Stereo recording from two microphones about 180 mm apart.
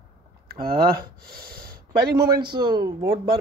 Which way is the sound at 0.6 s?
55° right (ahead or behind).